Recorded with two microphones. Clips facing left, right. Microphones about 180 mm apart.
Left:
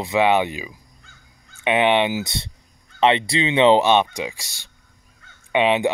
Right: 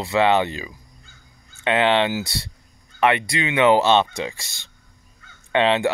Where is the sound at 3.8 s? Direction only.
15° left (ahead or behind).